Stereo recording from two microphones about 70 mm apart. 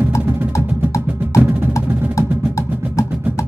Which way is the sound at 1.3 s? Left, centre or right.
Right.